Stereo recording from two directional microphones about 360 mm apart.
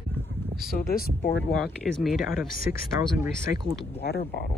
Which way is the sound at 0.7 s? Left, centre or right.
Left.